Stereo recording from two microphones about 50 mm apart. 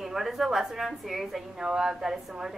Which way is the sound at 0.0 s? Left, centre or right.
Centre.